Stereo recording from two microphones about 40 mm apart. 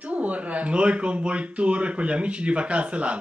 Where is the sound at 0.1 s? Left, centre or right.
Right.